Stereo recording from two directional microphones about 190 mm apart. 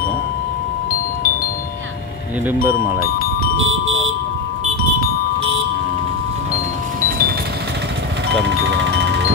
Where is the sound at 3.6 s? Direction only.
90° right.